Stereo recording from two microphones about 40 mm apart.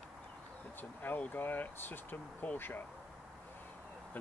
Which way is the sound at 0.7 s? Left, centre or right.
Left.